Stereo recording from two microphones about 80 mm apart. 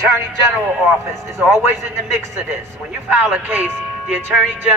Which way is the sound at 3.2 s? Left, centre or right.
Right.